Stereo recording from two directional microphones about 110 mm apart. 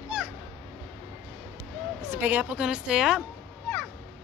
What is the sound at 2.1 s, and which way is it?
Speech, 15° right (ahead or behind).